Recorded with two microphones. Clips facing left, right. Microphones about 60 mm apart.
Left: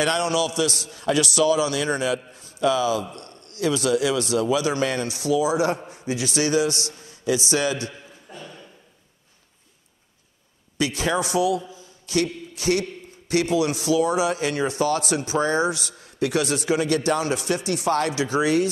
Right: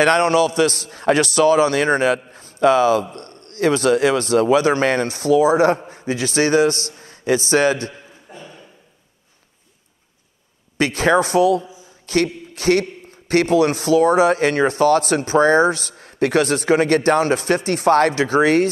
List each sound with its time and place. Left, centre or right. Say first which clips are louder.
0.0 s a man's voice: right 7 dB; right
7.9 s a sound: right 2 dB; centre
10.8 s speech: right 7 dB; right